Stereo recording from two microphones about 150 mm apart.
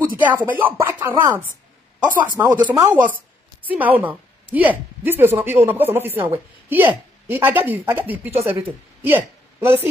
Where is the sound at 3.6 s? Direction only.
10° right (ahead or behind).